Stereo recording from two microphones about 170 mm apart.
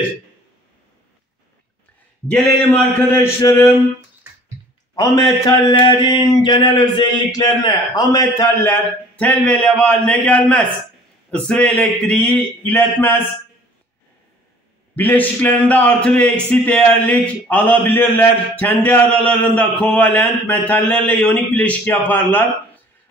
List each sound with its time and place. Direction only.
3.2 s a man's voice: 20° left (ahead or behind)
4.9 s speech: 20° left (ahead or behind)
9.2 s a man's voice: 5° left (ahead or behind)
15.0 s a man's voice: 10° left (ahead or behind)